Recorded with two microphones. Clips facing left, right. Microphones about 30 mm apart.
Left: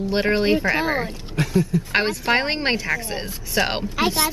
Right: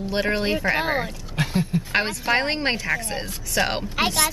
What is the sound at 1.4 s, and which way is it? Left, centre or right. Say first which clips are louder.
Speech: left 3 dB; right.